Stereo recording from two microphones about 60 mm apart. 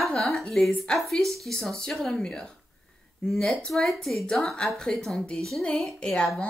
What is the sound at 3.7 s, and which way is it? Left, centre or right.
Speech, centre.